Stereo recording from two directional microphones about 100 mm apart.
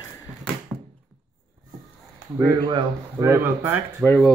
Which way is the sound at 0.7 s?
15° right (ahead or behind).